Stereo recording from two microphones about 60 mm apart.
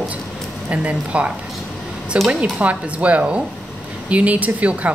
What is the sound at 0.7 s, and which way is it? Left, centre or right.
Speech, right.